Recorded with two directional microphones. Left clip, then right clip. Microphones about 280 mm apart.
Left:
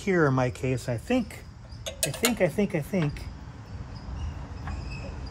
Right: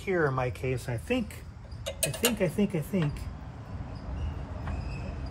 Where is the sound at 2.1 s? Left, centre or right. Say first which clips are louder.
Left 4 dB; left.